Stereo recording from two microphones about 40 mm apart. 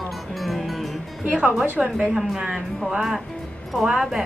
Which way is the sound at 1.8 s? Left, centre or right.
Centre.